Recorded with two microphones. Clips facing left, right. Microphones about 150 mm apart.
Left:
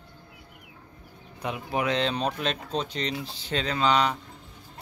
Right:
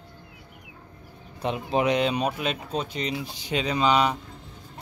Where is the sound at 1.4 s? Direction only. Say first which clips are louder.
Right 4 dB; 25° right (ahead or behind).